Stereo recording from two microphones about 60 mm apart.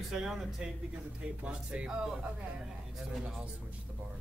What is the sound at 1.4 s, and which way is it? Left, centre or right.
Speech, centre.